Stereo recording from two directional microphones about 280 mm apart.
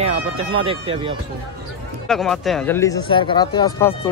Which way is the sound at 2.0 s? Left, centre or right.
Centre.